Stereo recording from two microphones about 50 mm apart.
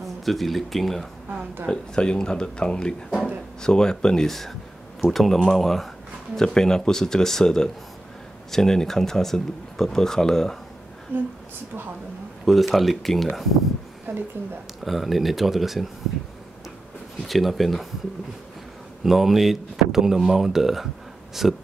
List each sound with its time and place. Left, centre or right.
0.0 s speech: centre
1.7 s speech: centre
11.1 s speech: right
12.4 s speech: centre
14.1 s speech: right
14.9 s speech: centre
17.3 s speech: centre
19.0 s speech: centre